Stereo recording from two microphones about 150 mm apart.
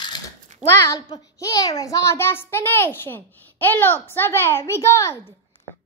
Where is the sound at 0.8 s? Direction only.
25° left (ahead or behind).